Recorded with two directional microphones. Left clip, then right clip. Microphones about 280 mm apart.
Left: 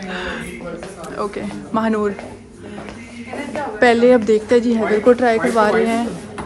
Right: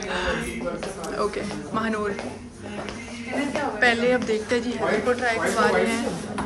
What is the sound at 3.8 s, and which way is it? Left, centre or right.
Speech, centre.